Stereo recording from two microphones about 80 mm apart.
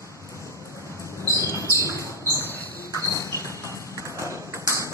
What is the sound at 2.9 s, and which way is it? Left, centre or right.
Music, left.